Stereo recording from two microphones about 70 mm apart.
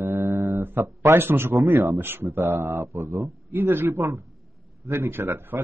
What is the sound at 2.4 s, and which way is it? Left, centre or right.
Speech, right.